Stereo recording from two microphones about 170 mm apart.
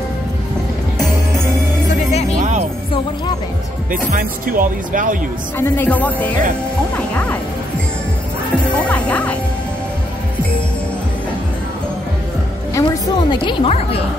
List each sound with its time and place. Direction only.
4.1 s speech: 55° right (ahead or behind)
5.6 s speech: 10° left (ahead or behind)
8.6 s music: 10° left (ahead or behind)
12.7 s a woman's voice: 25° left (ahead or behind)